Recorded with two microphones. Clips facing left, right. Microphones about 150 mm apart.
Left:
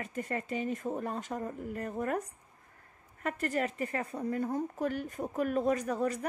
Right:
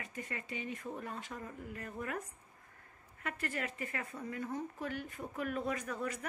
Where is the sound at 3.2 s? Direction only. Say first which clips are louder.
Left 8 dB; 40° left (ahead or behind).